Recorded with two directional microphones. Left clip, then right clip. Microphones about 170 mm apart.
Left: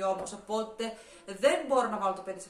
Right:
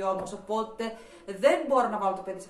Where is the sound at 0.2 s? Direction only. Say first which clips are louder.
Right 3 dB; 15° left (ahead or behind).